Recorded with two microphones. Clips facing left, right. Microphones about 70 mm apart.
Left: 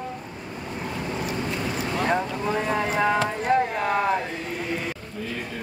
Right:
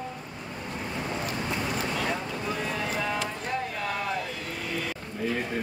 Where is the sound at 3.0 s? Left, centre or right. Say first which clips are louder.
Left 8 dB; left.